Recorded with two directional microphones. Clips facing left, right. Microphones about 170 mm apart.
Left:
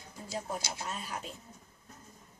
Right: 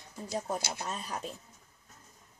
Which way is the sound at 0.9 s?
40° right (ahead or behind).